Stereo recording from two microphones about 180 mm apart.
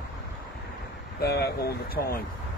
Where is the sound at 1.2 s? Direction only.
65° left (ahead or behind).